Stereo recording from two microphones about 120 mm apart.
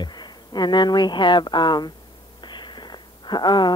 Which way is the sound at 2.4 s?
40° left (ahead or behind).